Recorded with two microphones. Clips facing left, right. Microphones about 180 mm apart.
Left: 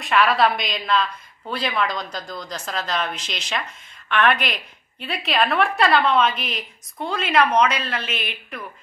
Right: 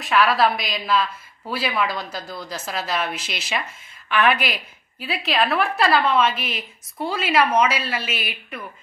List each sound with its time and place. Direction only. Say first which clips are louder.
0.0 s a woman's voice: even; centre (ahead or behind)